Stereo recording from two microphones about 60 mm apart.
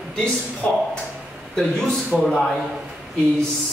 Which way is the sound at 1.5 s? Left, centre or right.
Centre.